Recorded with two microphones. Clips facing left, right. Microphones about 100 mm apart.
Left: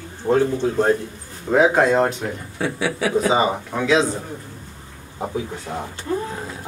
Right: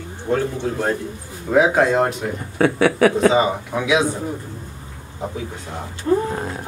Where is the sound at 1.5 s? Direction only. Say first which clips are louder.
Even; centre (ahead or behind).